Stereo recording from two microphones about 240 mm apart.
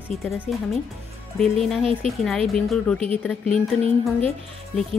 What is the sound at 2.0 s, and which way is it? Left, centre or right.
Speech, centre.